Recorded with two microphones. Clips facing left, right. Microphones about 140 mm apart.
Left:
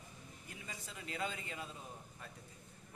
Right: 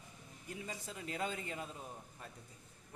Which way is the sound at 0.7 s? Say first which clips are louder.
Right 1 dB; 40° right (ahead or behind).